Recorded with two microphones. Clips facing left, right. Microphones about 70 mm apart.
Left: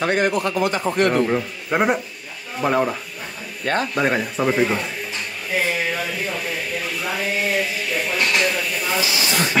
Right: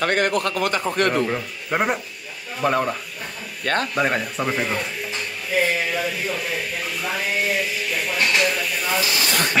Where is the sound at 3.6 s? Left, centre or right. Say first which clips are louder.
Left 1 dB; right.